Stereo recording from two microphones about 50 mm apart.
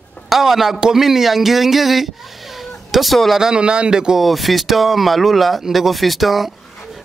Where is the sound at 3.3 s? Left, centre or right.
Centre.